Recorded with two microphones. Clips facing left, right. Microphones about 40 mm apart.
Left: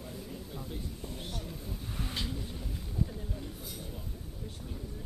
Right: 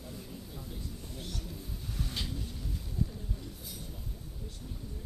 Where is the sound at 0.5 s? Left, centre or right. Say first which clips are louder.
Left 3 dB; left.